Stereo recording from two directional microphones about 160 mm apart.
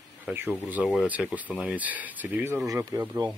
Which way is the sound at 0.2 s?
10° right (ahead or behind).